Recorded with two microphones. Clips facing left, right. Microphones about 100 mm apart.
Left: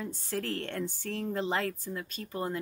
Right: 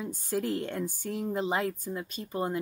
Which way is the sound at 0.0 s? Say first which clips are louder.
Right 4 dB; 15° right (ahead or behind).